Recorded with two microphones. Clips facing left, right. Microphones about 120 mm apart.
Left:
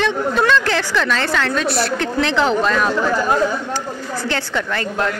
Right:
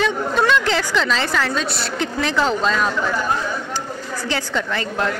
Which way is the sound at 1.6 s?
55° left (ahead or behind).